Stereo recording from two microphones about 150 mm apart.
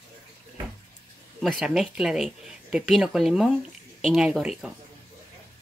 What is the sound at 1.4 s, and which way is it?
Speech, 5° right (ahead or behind).